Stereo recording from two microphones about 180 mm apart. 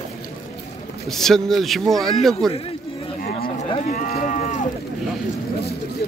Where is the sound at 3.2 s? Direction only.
55° left (ahead or behind).